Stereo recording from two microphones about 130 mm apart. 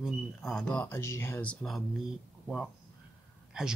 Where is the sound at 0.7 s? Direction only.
20° left (ahead or behind).